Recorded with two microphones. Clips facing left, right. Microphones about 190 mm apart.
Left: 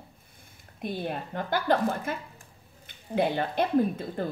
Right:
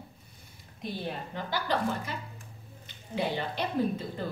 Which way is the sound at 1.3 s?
50° left (ahead or behind).